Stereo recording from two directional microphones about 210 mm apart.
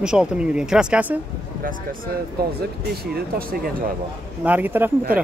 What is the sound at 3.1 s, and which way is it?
Speech, 45° right (ahead or behind).